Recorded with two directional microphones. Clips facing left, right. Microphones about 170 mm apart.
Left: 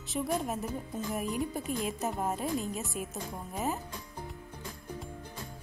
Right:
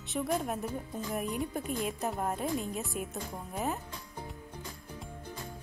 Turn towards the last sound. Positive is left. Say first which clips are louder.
# left 1 dB
turn(degrees=0)  # may be behind; listen again after turning